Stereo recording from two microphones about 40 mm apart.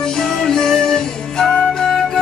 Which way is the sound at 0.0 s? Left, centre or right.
Centre.